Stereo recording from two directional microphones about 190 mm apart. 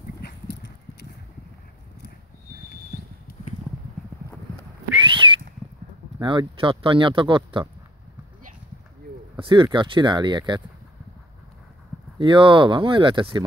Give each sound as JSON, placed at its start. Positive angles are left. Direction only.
{"t": 0.2, "sound": "clip-clop", "side_deg": 65}
{"t": 5.0, "sound": "whistling", "side_deg": -25}
{"t": 6.2, "sound": "speech", "side_deg": -25}
{"t": 9.4, "sound": "speech", "side_deg": -25}
{"t": 12.2, "sound": "speech", "side_deg": -25}